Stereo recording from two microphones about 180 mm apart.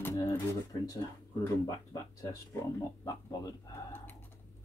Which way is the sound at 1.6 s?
20° left (ahead or behind).